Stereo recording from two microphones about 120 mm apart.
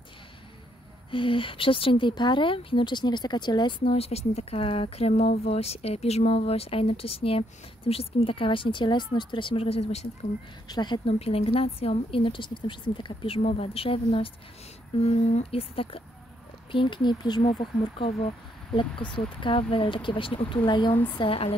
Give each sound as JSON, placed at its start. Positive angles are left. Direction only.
{"t": 1.1, "sound": "speech", "side_deg": 45}
{"t": 3.9, "sound": "speech", "side_deg": 60}
{"t": 10.7, "sound": "speech", "side_deg": 35}
{"t": 11.1, "sound": "speech", "side_deg": 55}
{"t": 13.4, "sound": "speech", "side_deg": 55}